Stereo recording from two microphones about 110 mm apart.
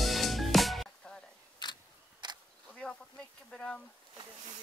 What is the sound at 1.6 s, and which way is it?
Camera, 45° left (ahead or behind).